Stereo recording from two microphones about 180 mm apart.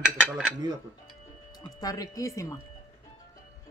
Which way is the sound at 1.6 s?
20° left (ahead or behind).